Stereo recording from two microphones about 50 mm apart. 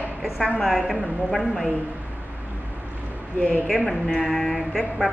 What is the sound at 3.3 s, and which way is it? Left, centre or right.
Speech, left.